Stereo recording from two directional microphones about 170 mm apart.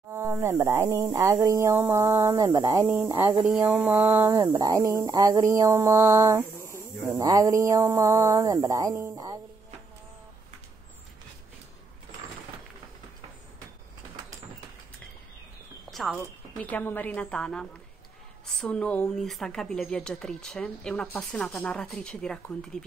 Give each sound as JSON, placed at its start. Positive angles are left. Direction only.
{"t": 0.1, "sound": "speech", "side_deg": -15}
{"t": 4.5, "sound": "a sound", "side_deg": -20}
{"t": 15.9, "sound": "a woman's voice", "side_deg": 0}